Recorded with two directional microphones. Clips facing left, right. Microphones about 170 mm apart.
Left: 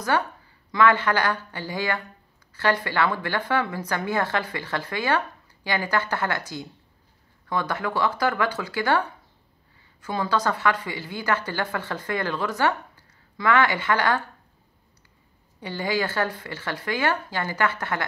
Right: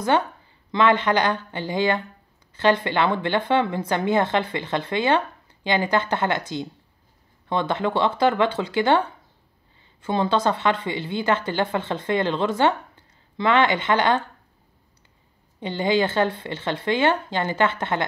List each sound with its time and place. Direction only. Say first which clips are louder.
0.1 s speech: right 3 dB; 25° right (ahead or behind)
10.0 s speech: right 4 dB; 25° right (ahead or behind)
15.6 s speech: right 5 dB; 20° right (ahead or behind)